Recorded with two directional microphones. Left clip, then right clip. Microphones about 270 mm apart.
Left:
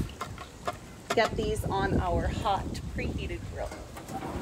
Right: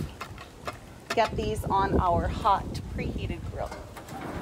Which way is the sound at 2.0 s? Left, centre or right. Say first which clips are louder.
Right 5 dB; centre.